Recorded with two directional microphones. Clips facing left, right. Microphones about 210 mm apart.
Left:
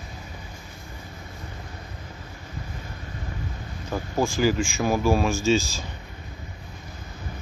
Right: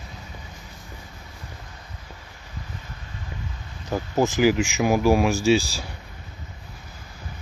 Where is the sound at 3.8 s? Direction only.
20° right (ahead or behind).